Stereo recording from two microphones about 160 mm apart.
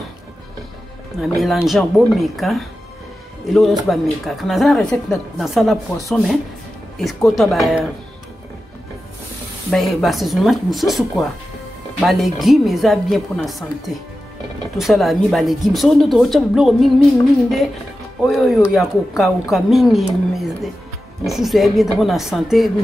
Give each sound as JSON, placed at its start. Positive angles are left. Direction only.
{"t": 1.2, "sound": "a woman's voice", "side_deg": 0}
{"t": 7.0, "sound": "a woman's voice", "side_deg": 0}
{"t": 9.7, "sound": "a woman's voice", "side_deg": 0}